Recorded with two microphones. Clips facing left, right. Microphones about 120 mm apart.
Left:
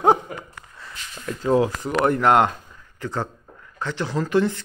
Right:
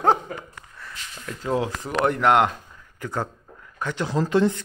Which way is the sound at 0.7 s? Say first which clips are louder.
Left 1 dB; 20° left (ahead or behind).